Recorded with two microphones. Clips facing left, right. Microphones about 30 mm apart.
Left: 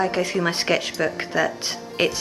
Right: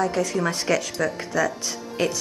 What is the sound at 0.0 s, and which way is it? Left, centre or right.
A woman's voice, left.